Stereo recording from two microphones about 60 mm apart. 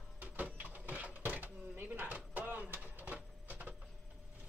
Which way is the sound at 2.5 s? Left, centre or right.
Right.